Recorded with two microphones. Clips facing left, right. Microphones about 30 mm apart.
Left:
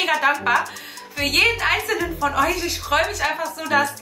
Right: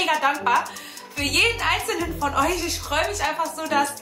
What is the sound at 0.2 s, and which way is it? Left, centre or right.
Speech, left.